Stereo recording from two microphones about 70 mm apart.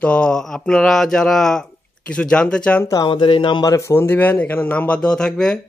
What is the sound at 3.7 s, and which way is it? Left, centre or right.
Speech, left.